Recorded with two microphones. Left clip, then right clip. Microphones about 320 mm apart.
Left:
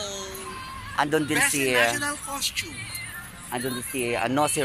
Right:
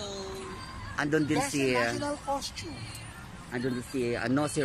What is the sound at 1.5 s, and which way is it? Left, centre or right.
Speech, left.